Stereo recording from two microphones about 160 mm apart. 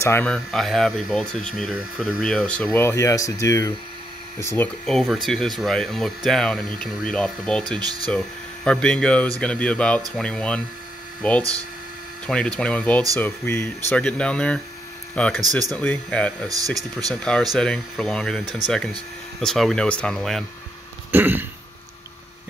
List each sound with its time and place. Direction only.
0.0 s speech: 10° left (ahead or behind)
4.8 s speech: centre (ahead or behind)
7.8 s speech: 25° right (ahead or behind)
8.6 s speech: 5° left (ahead or behind)
16.4 s speech: 20° right (ahead or behind)
17.1 s speech: 5° left (ahead or behind)
19.4 s speech: centre (ahead or behind)
21.1 s a man's voice: 10° right (ahead or behind)